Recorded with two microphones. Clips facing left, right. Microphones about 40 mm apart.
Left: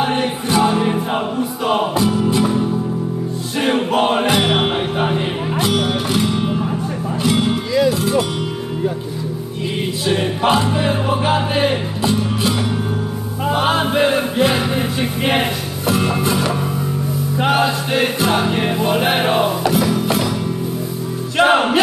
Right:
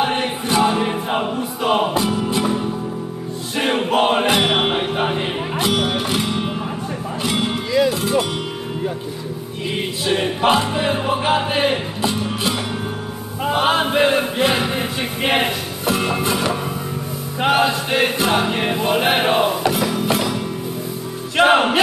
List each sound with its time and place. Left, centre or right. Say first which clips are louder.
0.0 s music: left 1 dB; right
10.0 s music: even; right
21.4 s music: even; right